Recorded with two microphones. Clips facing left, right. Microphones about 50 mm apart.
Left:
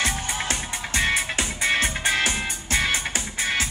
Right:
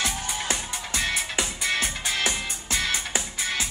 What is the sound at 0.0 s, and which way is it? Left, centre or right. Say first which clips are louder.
Music: left 3 dB; left.